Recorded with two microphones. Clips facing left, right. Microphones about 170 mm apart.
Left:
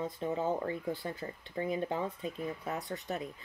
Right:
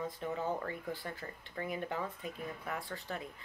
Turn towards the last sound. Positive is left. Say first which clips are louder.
# left 4 dB
turn(degrees=20)  # may be behind; listen again after turning